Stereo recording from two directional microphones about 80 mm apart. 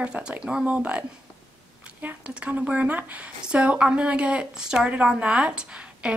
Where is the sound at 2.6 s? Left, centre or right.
Centre.